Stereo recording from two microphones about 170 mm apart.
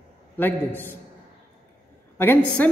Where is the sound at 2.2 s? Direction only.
10° left (ahead or behind).